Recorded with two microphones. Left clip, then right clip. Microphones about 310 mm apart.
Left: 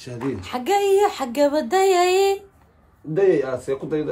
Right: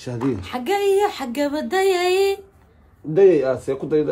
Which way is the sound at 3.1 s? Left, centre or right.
Centre.